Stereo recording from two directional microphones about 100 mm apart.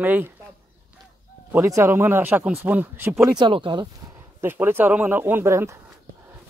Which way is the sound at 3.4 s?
55° right (ahead or behind).